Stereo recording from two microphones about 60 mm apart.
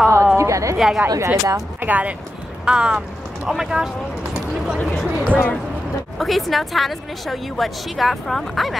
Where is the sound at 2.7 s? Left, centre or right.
Centre.